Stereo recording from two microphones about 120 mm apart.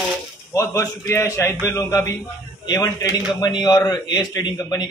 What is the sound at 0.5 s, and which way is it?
A man's voice, 25° left (ahead or behind).